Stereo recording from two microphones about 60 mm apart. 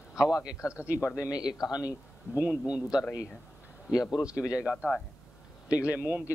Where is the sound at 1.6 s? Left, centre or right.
Left.